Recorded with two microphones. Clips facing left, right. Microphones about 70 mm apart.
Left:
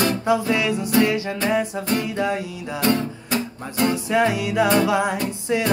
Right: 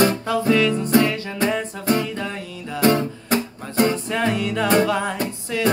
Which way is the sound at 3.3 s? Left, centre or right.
Right.